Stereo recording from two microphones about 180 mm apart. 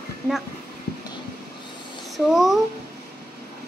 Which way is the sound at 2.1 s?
Centre (ahead or behind).